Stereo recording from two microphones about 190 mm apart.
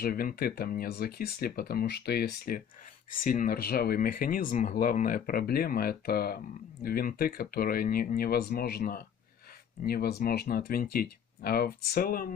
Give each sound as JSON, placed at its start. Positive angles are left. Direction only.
{"t": 0.0, "sound": "speech", "side_deg": 50}